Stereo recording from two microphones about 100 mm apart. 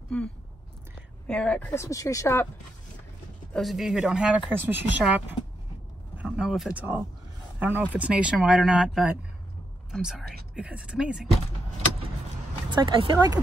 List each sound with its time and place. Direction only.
0.1 s a woman's voice: 5° left (ahead or behind)
1.7 s speech: 30° left (ahead or behind)
3.5 s speech: centre (ahead or behind)
6.1 s vehicle: 15° right (ahead or behind)
6.7 s speech: 15° right (ahead or behind)
12.7 s speech: 55° right (ahead or behind)